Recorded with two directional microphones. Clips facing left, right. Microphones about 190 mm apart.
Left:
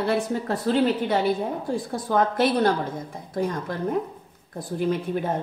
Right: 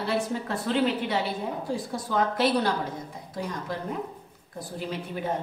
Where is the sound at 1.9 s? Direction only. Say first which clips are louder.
Left 4 dB; 50° left (ahead or behind).